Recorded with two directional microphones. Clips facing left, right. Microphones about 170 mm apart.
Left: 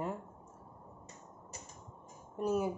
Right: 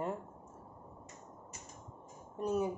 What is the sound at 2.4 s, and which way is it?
Speech, 5° left (ahead or behind).